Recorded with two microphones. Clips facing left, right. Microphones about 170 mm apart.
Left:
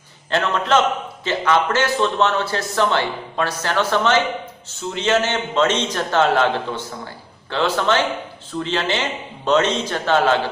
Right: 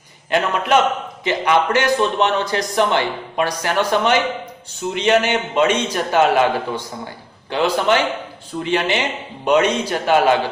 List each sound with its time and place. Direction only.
0.3 s a man's voice: 10° right (ahead or behind)